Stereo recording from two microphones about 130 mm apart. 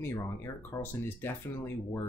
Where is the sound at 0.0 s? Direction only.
20° left (ahead or behind).